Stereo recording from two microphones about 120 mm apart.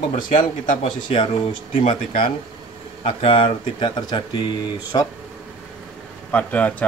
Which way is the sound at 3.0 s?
45° left (ahead or behind).